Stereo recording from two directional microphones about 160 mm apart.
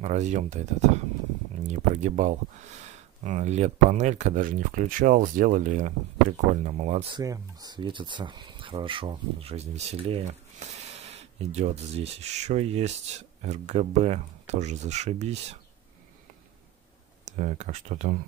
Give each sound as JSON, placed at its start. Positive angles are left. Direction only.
{"t": 0.0, "sound": "speech", "side_deg": -45}
{"t": 7.2, "sound": "speech", "side_deg": -25}
{"t": 17.2, "sound": "speech", "side_deg": -45}